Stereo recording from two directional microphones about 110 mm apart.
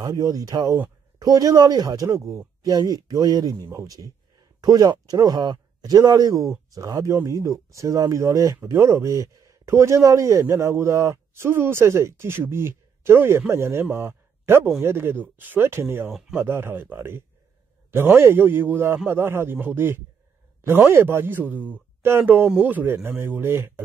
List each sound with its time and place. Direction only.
0.0 s speech: 35° right (ahead or behind)
16.1 s speech: 5° right (ahead or behind)
16.3 s speech: 20° right (ahead or behind)